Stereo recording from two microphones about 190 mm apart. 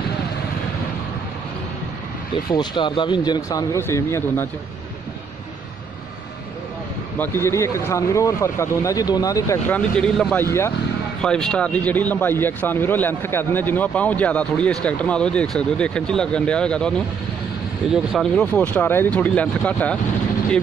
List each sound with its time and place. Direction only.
2.5 s speech: 25° left (ahead or behind)
7.2 s a man's voice: 15° left (ahead or behind)
9.8 s a man's voice: 5° left (ahead or behind)
17.9 s a man's voice: centre (ahead or behind)